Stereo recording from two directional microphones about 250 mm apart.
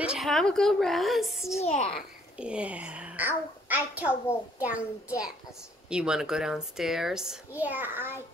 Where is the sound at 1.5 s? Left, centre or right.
Left.